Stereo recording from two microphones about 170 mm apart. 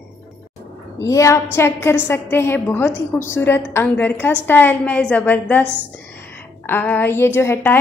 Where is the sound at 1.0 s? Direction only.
20° left (ahead or behind).